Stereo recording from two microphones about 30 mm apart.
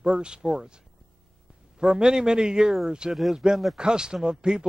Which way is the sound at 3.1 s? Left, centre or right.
Centre.